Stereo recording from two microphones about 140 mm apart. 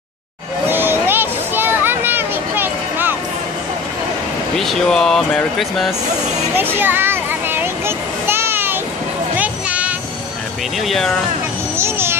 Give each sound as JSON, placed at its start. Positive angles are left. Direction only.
{"t": 0.7, "sound": "a sound", "side_deg": -15}
{"t": 4.6, "sound": "speech", "side_deg": 0}
{"t": 6.5, "sound": "a sound", "side_deg": -15}
{"t": 9.4, "sound": "music", "side_deg": -10}
{"t": 10.9, "sound": "speech", "side_deg": 5}
{"t": 11.7, "sound": "a child's voice", "side_deg": -15}